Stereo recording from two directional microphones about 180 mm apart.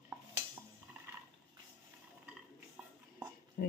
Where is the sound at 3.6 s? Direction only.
55° left (ahead or behind).